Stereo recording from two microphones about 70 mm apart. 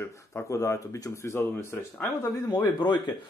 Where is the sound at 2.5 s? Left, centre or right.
Left.